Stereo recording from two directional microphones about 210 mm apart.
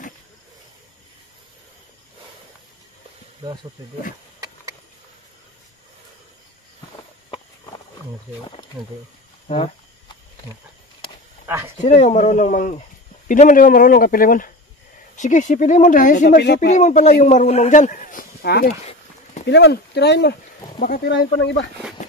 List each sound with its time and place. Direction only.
8.8 s speech: centre (ahead or behind)
11.4 s speech: 10° right (ahead or behind)
11.8 s speech: 35° left (ahead or behind); by 16.6 s 50° left (ahead or behind)
16.6 s speech: 35° left (ahead or behind)
21.4 s speech: 55° left (ahead or behind)